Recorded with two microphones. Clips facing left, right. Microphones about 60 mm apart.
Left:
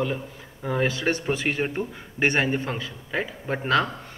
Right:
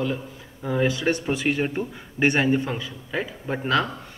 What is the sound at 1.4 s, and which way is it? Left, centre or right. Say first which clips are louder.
Speech: right 2 dB; centre.